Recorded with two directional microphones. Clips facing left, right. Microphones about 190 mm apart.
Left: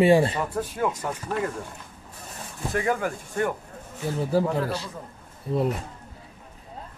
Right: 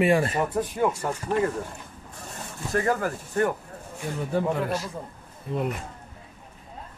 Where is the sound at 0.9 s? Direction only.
10° right (ahead or behind).